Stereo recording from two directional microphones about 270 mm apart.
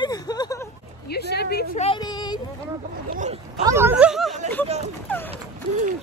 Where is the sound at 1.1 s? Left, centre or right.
Left.